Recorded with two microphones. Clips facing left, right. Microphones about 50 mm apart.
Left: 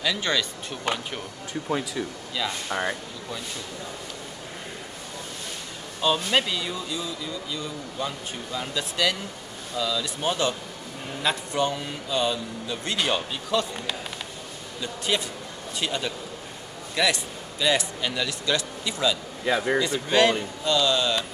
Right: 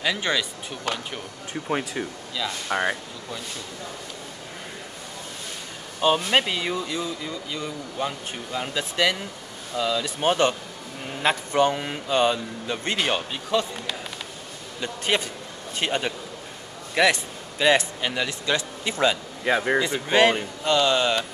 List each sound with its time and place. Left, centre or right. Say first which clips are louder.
0.0 s speech: right 1 dB; right
1.5 s speech: right 1 dB; right
5.9 s speech: right 3 dB; right
7.2 s speech: right 1 dB; right
12.9 s speech: even; right
14.8 s speech: right 2 dB; right